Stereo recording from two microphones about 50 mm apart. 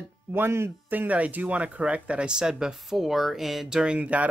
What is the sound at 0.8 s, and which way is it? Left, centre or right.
Speech, right.